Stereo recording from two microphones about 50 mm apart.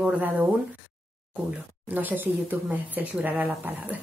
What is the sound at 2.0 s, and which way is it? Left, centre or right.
Speech, right.